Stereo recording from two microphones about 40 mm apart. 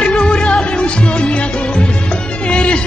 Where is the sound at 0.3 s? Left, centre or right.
Left.